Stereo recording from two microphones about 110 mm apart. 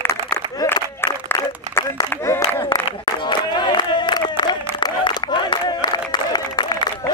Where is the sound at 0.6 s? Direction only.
35° left (ahead or behind).